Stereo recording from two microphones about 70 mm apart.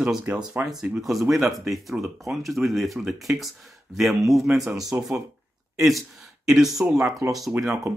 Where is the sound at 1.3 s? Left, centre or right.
Centre.